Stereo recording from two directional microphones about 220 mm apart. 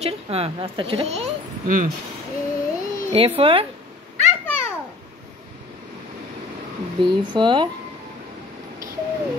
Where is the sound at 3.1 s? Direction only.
25° right (ahead or behind).